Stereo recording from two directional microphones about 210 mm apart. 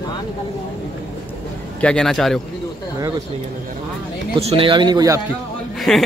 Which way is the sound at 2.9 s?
15° right (ahead or behind).